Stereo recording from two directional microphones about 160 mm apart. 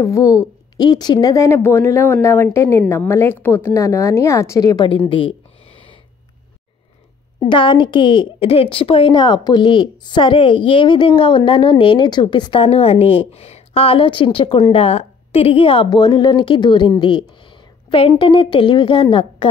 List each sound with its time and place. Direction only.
0.0 s a woman's voice: 20° left (ahead or behind)
7.3 s a woman's voice: 30° left (ahead or behind)